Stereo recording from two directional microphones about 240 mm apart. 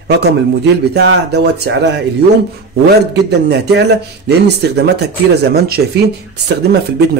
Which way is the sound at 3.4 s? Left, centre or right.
Right.